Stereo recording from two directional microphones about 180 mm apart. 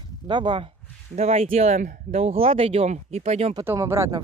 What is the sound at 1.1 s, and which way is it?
Speech, 35° right (ahead or behind).